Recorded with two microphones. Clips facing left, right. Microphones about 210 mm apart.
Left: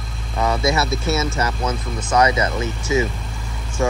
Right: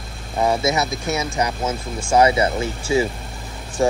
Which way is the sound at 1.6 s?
30° right (ahead or behind).